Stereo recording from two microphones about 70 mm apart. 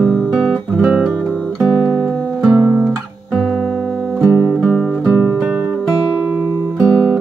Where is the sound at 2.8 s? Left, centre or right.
Centre.